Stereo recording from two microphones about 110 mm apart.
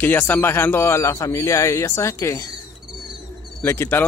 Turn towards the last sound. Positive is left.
turn(degrees=20)  # may be behind; listen again after turning